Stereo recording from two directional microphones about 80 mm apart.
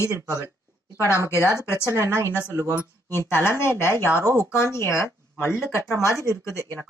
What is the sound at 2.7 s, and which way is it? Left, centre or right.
A woman's voice, left.